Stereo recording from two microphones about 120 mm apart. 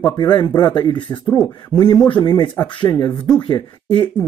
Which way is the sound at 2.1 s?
40° left (ahead or behind).